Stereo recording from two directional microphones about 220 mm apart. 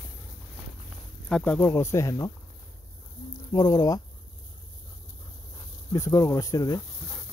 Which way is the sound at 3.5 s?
15° left (ahead or behind).